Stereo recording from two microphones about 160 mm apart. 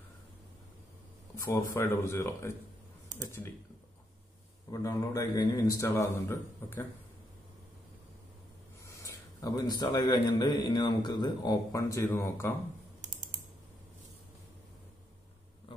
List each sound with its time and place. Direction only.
1.3 s speech: 20° left (ahead or behind)
4.6 s a man's voice: 20° left (ahead or behind)
8.8 s a man's voice: 20° left (ahead or behind)